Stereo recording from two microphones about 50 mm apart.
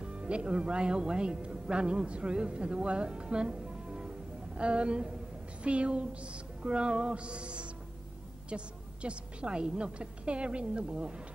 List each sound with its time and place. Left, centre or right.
0.0 s a woman's voice: centre